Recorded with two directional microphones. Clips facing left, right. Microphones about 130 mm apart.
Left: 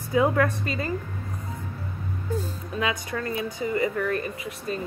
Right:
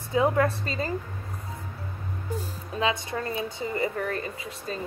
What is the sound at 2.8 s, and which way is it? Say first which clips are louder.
Speech: right 1 dB; 25° right (ahead or behind).